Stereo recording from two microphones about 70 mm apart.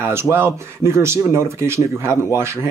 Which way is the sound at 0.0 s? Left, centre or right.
Right.